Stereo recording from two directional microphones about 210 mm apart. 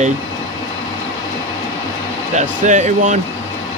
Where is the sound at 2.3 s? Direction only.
35° right (ahead or behind).